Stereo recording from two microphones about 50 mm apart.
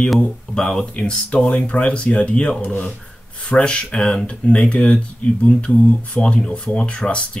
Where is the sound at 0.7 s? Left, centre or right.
Centre.